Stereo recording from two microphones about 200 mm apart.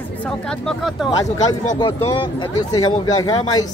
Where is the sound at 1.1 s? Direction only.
20° left (ahead or behind).